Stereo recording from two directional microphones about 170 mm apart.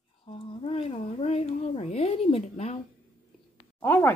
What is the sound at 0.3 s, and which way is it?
Speech, 35° left (ahead or behind).